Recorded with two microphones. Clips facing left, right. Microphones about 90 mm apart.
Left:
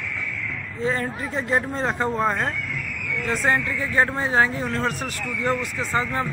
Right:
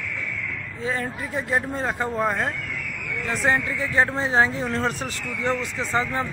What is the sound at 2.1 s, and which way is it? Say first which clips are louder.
Speech: left 1 dB; 15° left (ahead or behind).